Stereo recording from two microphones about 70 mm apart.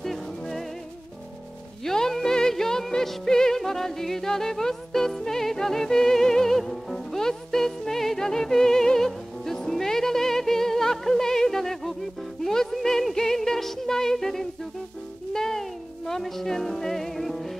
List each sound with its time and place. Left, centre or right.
0.0 s music: centre
1.9 s music: centre